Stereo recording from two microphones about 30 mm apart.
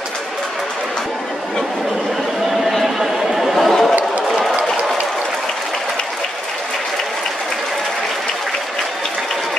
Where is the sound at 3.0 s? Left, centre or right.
Centre.